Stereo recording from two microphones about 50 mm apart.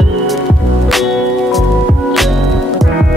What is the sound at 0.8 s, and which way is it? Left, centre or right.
Music, centre.